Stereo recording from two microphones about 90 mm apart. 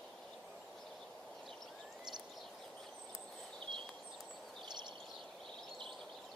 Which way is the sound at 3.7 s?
60° right (ahead or behind).